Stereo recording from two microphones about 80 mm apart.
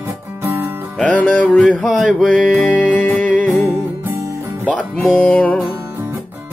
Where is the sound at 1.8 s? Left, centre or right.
Centre.